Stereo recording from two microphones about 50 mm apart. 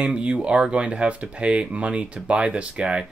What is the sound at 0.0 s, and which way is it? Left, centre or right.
Speech, right.